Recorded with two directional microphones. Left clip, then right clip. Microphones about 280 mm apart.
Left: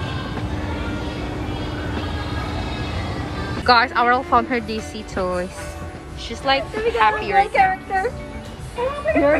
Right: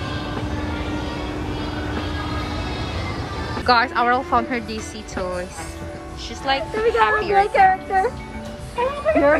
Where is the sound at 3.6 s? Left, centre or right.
Centre.